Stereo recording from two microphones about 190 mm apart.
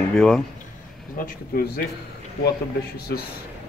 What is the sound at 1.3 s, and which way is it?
Speech, 50° left (ahead or behind).